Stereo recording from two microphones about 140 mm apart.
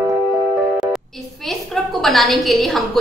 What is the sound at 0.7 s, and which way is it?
A woman's voice, centre (ahead or behind).